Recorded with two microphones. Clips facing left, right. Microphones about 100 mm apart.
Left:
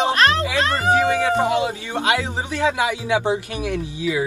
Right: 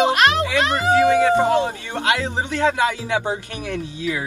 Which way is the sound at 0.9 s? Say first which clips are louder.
Right 4 dB; 15° left (ahead or behind).